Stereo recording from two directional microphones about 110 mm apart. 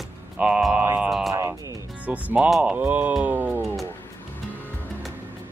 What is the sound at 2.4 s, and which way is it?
Speech, centre (ahead or behind).